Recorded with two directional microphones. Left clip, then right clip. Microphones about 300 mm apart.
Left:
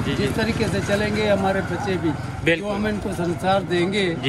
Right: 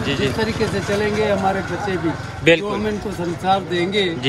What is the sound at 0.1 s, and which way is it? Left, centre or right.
Speech, centre.